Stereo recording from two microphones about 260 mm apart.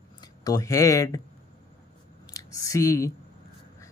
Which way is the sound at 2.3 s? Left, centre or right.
Centre.